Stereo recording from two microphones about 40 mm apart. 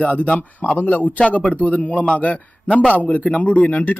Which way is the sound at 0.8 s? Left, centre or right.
Left.